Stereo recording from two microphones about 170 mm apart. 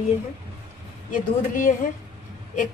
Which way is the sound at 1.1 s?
50° left (ahead or behind).